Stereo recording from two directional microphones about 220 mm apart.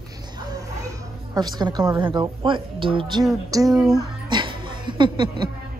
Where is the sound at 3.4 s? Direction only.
15° right (ahead or behind).